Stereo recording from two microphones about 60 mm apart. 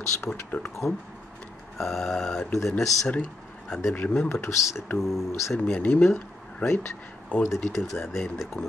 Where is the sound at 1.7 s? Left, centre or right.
Centre.